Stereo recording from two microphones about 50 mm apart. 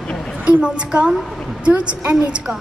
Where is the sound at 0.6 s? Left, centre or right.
Centre.